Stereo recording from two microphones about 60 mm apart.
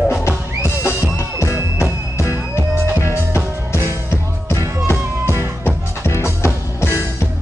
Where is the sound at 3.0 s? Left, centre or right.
Left.